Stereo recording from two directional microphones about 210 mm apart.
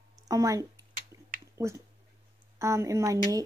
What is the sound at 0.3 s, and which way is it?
Speech, 15° right (ahead or behind).